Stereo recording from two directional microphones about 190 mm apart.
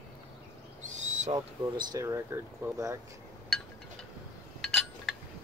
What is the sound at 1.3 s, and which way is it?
Speech, 20° right (ahead or behind).